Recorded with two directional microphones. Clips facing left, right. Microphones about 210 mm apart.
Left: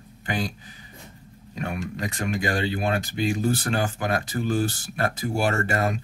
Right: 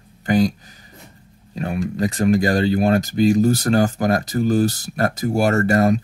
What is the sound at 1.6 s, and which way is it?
Speech, 35° right (ahead or behind).